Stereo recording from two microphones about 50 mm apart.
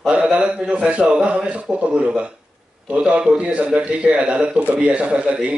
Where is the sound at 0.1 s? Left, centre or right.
Right.